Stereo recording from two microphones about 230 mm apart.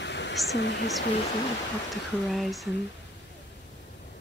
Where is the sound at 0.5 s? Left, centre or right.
Left.